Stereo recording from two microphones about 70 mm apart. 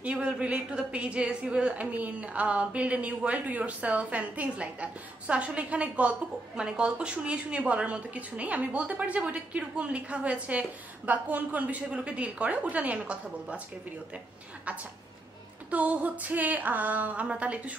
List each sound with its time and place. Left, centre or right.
0.0 s a woman's voice: centre
15.7 s a woman's voice: right